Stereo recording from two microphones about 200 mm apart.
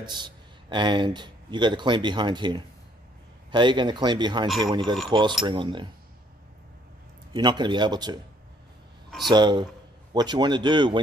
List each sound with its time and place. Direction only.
0.0 s a man's voice: 20° right (ahead or behind)
7.3 s speech: 20° right (ahead or behind)
9.3 s speech: 20° right (ahead or behind)